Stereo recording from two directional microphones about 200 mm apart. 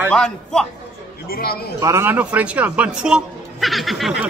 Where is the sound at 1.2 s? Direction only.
50° left (ahead or behind).